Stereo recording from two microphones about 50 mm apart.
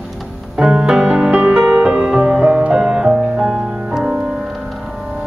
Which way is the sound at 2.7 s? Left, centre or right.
Centre.